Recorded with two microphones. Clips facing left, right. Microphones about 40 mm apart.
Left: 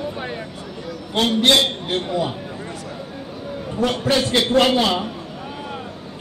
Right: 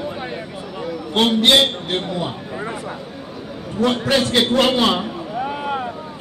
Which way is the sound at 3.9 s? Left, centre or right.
Right.